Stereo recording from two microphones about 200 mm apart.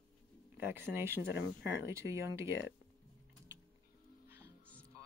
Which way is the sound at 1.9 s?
15° right (ahead or behind).